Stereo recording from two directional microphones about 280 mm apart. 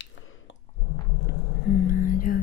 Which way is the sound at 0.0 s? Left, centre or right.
Left.